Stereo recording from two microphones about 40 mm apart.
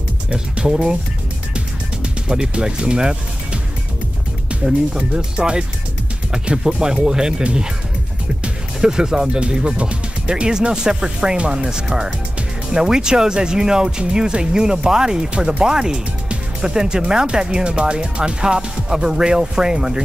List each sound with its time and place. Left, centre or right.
0.7 s speech: right
2.2 s speech: centre
4.9 s speech: right
8.8 s speech: centre